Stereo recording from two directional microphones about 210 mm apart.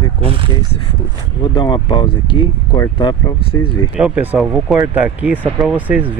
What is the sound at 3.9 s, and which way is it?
Speech, 5° right (ahead or behind).